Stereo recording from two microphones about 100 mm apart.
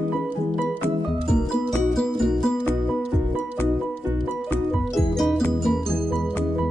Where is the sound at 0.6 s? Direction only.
10° left (ahead or behind).